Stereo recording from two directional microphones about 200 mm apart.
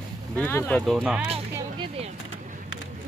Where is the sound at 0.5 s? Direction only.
10° left (ahead or behind).